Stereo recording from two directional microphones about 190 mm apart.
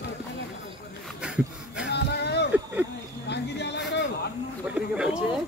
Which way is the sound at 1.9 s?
60° left (ahead or behind).